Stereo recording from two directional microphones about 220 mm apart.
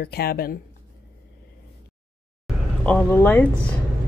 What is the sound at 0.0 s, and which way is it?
Speech, 45° left (ahead or behind).